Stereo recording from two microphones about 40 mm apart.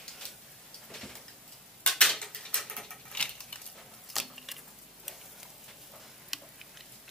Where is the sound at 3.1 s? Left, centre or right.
Left.